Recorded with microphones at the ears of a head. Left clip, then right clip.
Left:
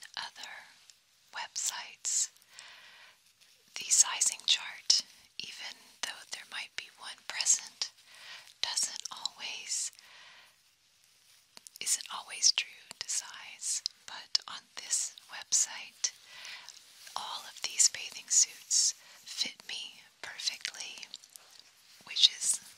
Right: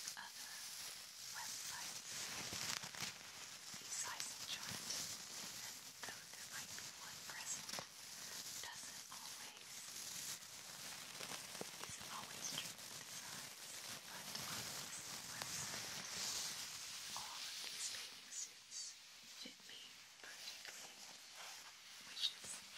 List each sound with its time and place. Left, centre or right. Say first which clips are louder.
0.1 s pig: left 10 dB; left
1.3 s whispering: left 12 dB; left
2.3 s a sound: right 7 dB; right
3.7 s whispering: left 19 dB; left
11.8 s whispering: left 13 dB; left
17.1 s whispering: left 13 dB; left